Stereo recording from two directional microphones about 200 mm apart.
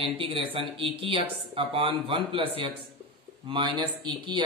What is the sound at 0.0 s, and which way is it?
Speech, 25° right (ahead or behind).